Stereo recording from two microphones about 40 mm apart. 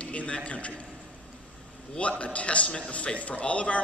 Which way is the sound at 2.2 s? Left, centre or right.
Left.